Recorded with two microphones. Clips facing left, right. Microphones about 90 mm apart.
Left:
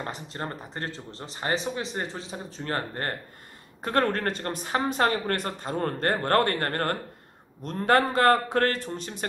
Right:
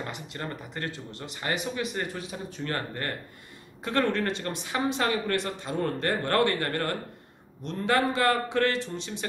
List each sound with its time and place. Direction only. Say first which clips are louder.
0.0 s speech: left 2 dB; 35° left (ahead or behind)